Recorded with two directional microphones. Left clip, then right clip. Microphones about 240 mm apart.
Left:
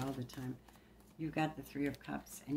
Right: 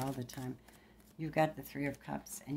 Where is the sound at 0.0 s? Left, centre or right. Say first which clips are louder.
Right 2 dB; right.